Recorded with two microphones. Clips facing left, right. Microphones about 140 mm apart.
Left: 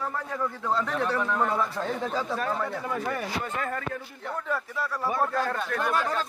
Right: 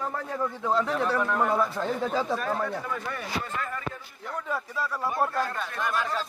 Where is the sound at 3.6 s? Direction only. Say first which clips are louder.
Left 3 dB; 55° left (ahead or behind).